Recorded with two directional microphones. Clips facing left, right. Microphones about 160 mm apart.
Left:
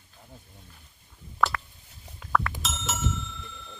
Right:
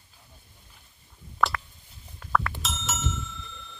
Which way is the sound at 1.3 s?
Centre (ahead or behind).